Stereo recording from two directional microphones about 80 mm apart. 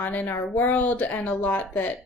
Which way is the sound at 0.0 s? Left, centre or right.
Left.